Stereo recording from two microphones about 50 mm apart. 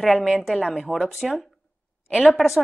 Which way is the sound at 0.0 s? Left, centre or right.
Centre.